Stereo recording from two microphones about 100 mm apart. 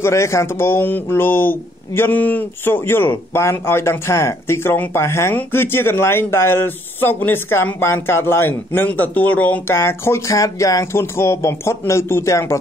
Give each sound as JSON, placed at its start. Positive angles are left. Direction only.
{"t": 0.0, "sound": "speech", "side_deg": 30}